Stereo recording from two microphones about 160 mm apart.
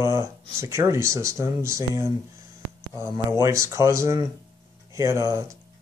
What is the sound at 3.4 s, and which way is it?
Speech, 15° right (ahead or behind).